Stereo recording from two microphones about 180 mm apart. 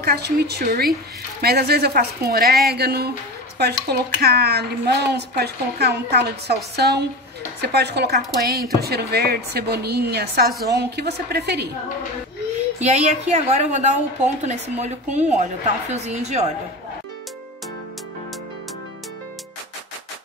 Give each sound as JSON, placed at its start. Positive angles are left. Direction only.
{"t": 0.0, "sound": "a woman's voice", "side_deg": -60}
{"t": 12.8, "sound": "a woman's voice", "side_deg": -40}